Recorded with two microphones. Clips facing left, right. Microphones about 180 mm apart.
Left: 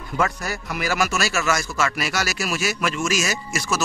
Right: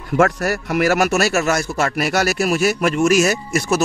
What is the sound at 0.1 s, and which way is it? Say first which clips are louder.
Speech: right 8 dB; 70° right (ahead or behind).